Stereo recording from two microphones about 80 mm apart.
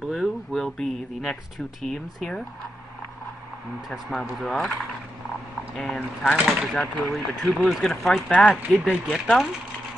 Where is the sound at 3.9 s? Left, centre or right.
Centre.